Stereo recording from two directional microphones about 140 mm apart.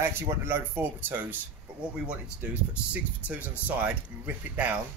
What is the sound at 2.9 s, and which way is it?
Speech, 10° right (ahead or behind).